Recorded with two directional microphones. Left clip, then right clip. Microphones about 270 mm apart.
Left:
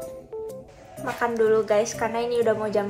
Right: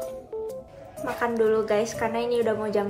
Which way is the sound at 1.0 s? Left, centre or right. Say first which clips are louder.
Left 1 dB; centre.